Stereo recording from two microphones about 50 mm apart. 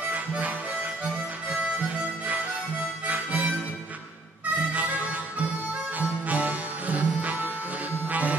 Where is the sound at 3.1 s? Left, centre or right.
Right.